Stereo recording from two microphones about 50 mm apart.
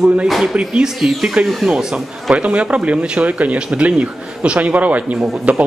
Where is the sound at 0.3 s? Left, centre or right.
Centre.